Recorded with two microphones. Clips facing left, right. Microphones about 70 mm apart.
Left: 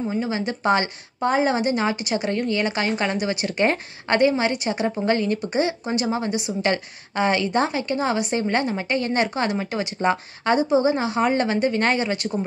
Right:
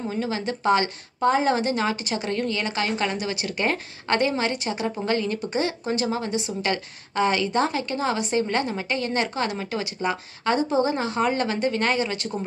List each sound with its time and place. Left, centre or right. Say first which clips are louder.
0.1 s a woman's voice: left 2 dB; centre